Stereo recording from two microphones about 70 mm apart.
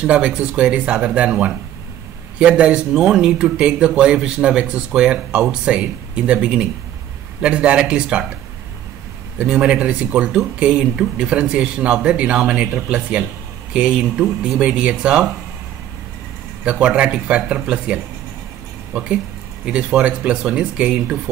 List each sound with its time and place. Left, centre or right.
0.0 s a man's voice: centre
9.4 s a man's voice: centre
16.6 s a man's voice: centre
19.6 s a man's voice: centre